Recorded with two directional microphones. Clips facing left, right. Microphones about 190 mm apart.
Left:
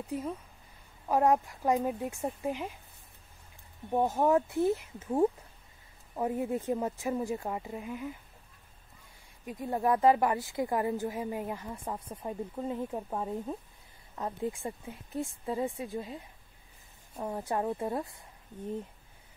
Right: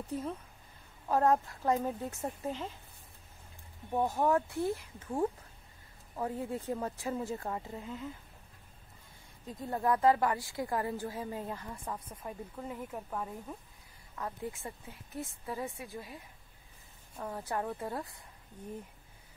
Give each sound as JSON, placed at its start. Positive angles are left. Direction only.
{"t": 0.0, "sound": "a woman's voice", "side_deg": 10}
{"t": 3.9, "sound": "a woman's voice", "side_deg": 20}
{"t": 9.5, "sound": "a woman's voice", "side_deg": 15}